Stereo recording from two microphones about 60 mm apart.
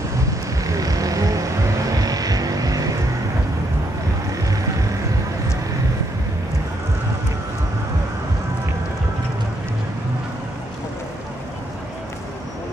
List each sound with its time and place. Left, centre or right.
0.7 s vehicle: right
1.9 s vehicle: right